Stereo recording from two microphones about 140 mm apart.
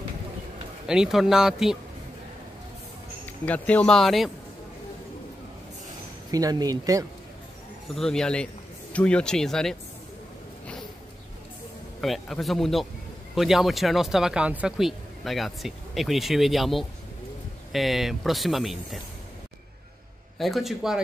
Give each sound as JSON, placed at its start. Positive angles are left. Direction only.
{"t": 0.8, "sound": "speech", "side_deg": -5}
{"t": 3.3, "sound": "speech", "side_deg": 10}
{"t": 6.3, "sound": "speech", "side_deg": -25}
{"t": 7.9, "sound": "speech", "side_deg": 5}
{"t": 12.0, "sound": "speech", "side_deg": 0}
{"t": 20.3, "sound": "speech", "side_deg": 0}